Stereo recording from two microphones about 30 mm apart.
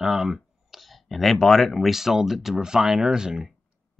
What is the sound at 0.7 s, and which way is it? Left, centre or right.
Speech, centre.